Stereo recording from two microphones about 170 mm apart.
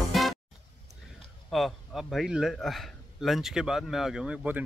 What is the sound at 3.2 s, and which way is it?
Speech, centre (ahead or behind).